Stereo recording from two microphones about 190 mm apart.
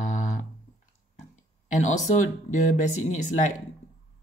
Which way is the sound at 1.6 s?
40° left (ahead or behind).